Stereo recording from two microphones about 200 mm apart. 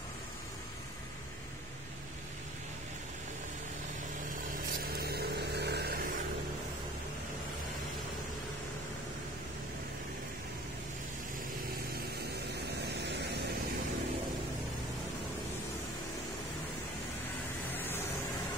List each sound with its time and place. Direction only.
4.8 s vehicle: 50° right (ahead or behind)
17.6 s vehicle: 10° left (ahead or behind)